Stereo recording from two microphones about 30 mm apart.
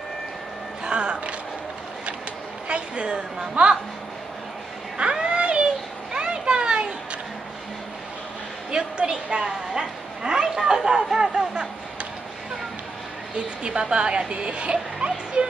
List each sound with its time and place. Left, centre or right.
0.8 s speech: right
2.7 s speech: right
4.9 s a sound: right
6.1 s children playing: right
8.7 s a woman's voice: right
13.7 s speech: right